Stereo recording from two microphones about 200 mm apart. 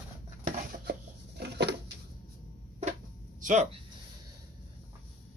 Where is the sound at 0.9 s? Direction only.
55° right (ahead or behind).